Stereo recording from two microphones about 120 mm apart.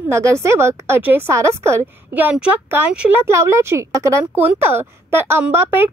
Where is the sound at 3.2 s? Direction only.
25° right (ahead or behind).